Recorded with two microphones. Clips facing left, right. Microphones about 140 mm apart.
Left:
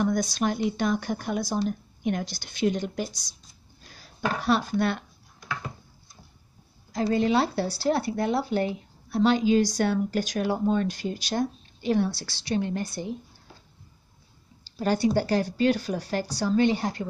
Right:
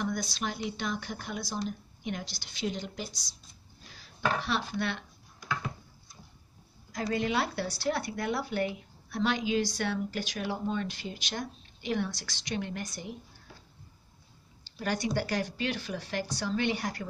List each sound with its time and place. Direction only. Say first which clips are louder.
0.0 s speech: left 8 dB; 45° left (ahead or behind)
6.9 s speech: left 7 dB; 30° left (ahead or behind)
14.8 s speech: left 7 dB; 30° left (ahead or behind)